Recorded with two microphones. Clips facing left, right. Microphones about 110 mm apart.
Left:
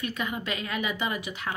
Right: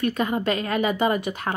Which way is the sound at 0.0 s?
40° right (ahead or behind).